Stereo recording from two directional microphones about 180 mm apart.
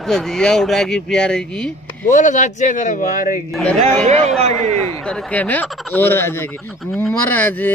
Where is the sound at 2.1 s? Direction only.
45° left (ahead or behind).